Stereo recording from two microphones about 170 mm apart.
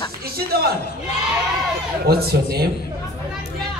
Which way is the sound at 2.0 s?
65° right (ahead or behind).